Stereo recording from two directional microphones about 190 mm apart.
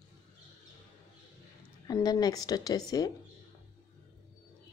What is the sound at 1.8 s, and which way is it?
A woman's voice, 20° left (ahead or behind).